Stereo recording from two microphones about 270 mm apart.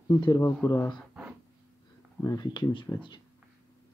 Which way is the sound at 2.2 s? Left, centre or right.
Centre.